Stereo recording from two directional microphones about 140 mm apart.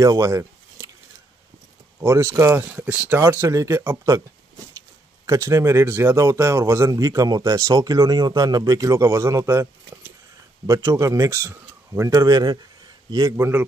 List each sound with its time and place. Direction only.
0.0 s a sound: 25° right (ahead or behind)
2.0 s speech: 20° right (ahead or behind)
5.2 s a man's voice: 20° right (ahead or behind)